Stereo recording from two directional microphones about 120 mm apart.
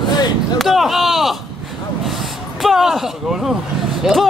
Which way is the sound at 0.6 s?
Centre (ahead or behind).